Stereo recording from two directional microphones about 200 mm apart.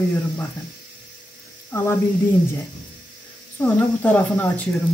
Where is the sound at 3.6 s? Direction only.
5° left (ahead or behind).